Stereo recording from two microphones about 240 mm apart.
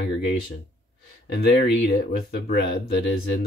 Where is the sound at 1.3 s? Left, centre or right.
Left.